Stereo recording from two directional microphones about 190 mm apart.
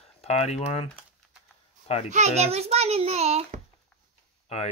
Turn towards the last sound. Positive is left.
turn(degrees=30)  # may be behind; listen again after turning